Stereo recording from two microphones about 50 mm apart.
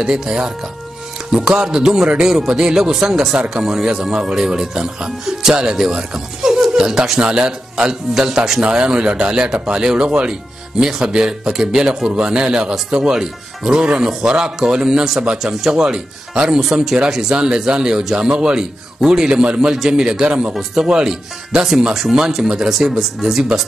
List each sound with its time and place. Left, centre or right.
0.0 s speech: centre